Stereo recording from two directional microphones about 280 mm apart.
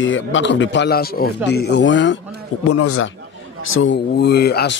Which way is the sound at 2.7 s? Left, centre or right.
Left.